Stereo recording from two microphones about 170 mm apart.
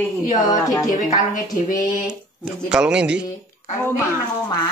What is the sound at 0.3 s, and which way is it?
Speech, 20° left (ahead or behind).